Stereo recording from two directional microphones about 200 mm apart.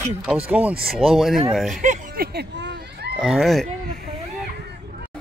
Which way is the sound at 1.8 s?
45° right (ahead or behind).